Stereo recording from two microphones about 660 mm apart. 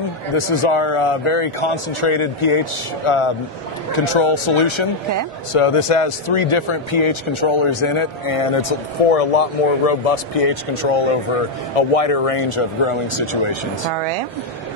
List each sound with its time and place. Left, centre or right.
0.4 s a man's voice: left
13.8 s speech: right